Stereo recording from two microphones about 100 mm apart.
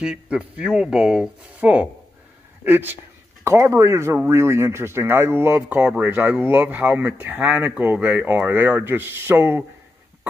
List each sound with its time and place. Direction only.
0.0 s speech: 10° right (ahead or behind)